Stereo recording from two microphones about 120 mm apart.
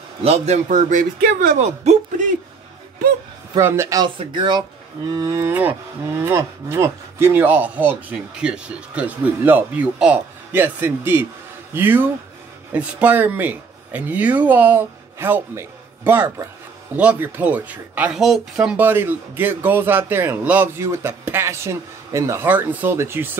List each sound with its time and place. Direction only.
0.2 s a man's voice: 65° right (ahead or behind); by 1.0 s 90° right
1.6 s speech: 70° right (ahead or behind)
3.5 s speech: 20° right (ahead or behind)
4.2 s speech: 40° right (ahead or behind)
5.1 s speech: 25° right (ahead or behind); by 18.8 s 5° right (ahead or behind)
18.8 s speech: 15° right (ahead or behind)